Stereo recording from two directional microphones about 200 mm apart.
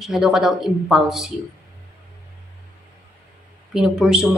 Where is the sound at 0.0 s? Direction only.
Centre (ahead or behind).